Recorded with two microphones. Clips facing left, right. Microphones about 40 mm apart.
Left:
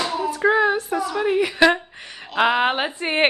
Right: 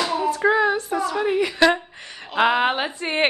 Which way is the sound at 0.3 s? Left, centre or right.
Centre.